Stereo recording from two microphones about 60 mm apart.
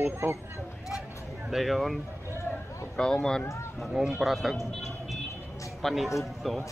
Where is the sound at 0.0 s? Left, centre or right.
Right.